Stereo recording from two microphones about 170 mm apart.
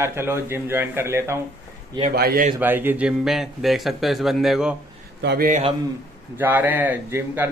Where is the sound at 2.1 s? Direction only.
60° right (ahead or behind).